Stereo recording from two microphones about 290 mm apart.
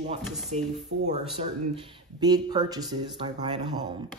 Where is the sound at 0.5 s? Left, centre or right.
Right.